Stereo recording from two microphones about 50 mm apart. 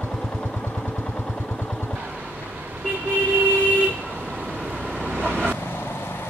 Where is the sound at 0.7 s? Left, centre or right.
Left.